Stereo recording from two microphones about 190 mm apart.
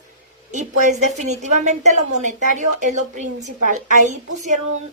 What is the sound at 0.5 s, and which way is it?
A woman's voice, 40° right (ahead or behind).